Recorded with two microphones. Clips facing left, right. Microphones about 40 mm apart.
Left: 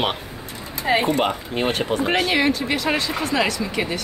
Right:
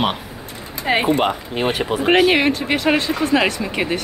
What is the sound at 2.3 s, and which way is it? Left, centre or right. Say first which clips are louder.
Speech: right 3 dB; right.